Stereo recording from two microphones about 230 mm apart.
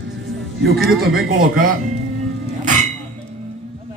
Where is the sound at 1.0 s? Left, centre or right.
Right.